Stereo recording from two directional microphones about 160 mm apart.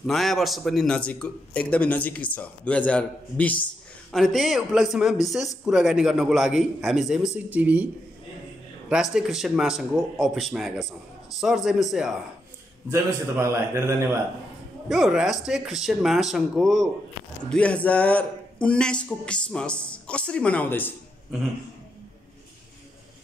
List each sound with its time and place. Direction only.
0.0 s a man's voice: centre (ahead or behind)
9.1 s a man's voice: centre (ahead or behind)
12.9 s a man's voice: 15° right (ahead or behind)
14.9 s a man's voice: centre (ahead or behind)